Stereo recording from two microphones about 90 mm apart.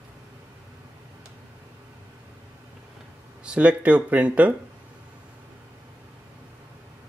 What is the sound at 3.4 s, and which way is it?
Speech, 10° right (ahead or behind).